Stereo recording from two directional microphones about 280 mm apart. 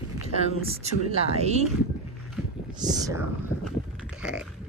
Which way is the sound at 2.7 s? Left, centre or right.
Centre.